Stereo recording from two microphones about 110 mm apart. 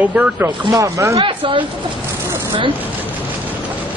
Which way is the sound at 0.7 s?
30° right (ahead or behind).